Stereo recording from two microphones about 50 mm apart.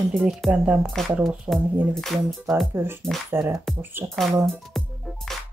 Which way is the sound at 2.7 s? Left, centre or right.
Right.